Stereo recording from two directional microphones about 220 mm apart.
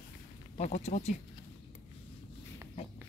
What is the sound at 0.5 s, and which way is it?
Speech, 30° left (ahead or behind).